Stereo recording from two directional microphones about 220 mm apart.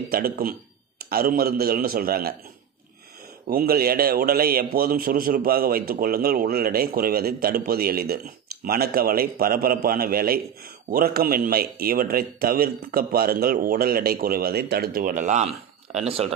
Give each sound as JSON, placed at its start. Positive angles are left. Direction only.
{"t": 0.1, "sound": "a man's voice", "side_deg": -40}
{"t": 3.4, "sound": "a man's voice", "side_deg": -40}